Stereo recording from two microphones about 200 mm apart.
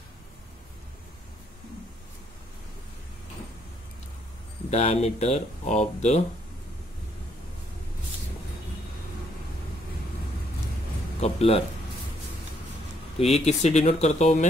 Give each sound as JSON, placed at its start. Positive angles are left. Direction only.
{"t": 4.6, "sound": "speech", "side_deg": 35}
{"t": 11.1, "sound": "speech", "side_deg": 30}
{"t": 13.5, "sound": "speech", "side_deg": 35}